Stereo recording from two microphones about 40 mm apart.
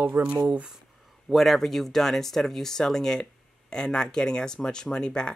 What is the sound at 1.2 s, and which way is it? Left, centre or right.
Speech, centre.